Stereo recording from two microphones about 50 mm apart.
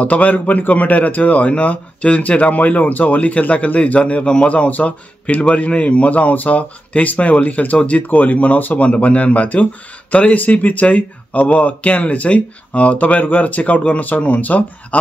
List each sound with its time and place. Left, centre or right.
0.0 s speech: left